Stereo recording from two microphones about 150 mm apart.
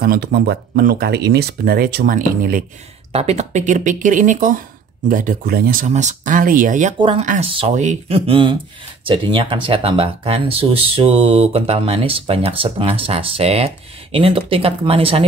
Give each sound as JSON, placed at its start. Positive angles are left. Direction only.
{"t": 0.0, "sound": "speech", "side_deg": -90}
{"t": 3.1, "sound": "speech", "side_deg": -45}
{"t": 5.9, "sound": "speech", "side_deg": -55}
{"t": 7.0, "sound": "speech", "side_deg": -35}
{"t": 7.3, "sound": "speech", "side_deg": -45}
{"t": 8.3, "sound": "speech", "side_deg": -35}